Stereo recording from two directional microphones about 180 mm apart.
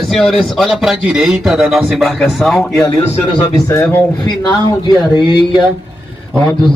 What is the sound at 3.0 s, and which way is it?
Speech, 35° left (ahead or behind).